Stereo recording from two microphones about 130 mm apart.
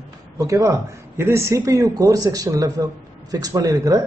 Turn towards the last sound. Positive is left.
turn(degrees=-30)  # may be behind; listen again after turning